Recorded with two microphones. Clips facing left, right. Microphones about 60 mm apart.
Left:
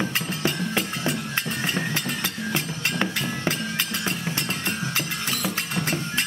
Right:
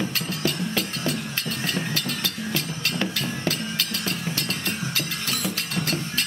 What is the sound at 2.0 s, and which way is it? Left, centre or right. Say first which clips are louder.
Music: left 1 dB; left.